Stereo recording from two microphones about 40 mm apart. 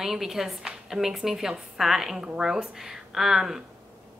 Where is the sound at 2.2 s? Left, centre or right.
Centre.